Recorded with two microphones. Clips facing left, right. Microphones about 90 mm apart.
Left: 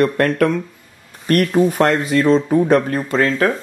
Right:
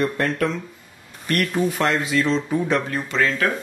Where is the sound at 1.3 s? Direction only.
45° left (ahead or behind).